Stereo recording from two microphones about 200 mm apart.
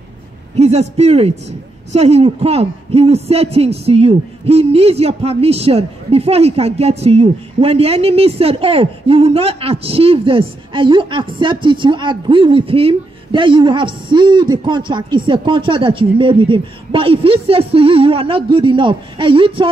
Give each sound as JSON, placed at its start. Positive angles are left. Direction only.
{"t": 0.6, "sound": "a man's voice", "side_deg": -30}